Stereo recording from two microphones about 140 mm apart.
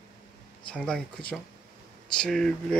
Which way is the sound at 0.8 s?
5° left (ahead or behind).